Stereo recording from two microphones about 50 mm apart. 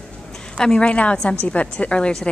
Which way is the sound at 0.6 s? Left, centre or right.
Centre.